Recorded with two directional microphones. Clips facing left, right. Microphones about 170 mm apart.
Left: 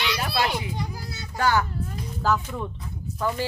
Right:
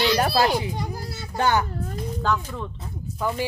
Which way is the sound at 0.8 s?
50° right (ahead or behind).